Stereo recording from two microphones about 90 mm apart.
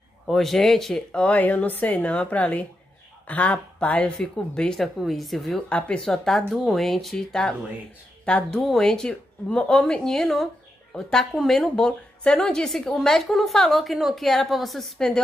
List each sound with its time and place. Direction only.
0.3 s a woman's voice: 5° left (ahead or behind)
8.5 s a woman's voice: 5° left (ahead or behind)